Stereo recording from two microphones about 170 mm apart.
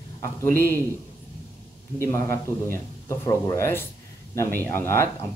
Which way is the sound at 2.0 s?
15° left (ahead or behind).